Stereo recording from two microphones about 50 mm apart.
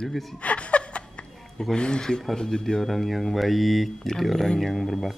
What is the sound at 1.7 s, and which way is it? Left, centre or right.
Speech, centre.